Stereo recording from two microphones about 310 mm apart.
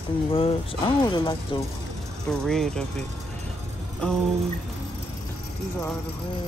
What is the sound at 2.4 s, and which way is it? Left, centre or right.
Speech, centre.